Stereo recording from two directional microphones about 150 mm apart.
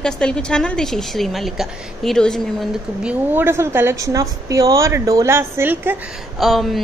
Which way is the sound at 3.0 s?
10° right (ahead or behind).